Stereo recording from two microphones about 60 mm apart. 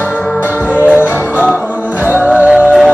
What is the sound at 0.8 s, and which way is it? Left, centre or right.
Music, right.